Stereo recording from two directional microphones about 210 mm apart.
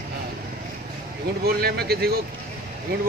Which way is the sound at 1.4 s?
50° right (ahead or behind).